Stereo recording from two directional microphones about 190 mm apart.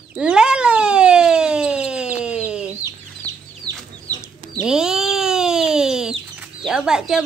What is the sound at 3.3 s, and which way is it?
Chicken, 20° right (ahead or behind).